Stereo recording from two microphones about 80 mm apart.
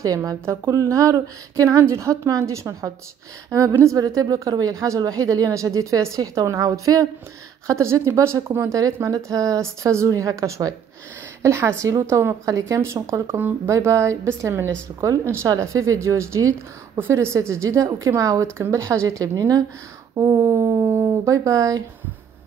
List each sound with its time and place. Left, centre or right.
0.0 s speech: right
9.1 s speech: right